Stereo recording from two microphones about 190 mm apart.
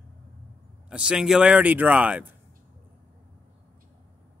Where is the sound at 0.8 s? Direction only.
5° right (ahead or behind).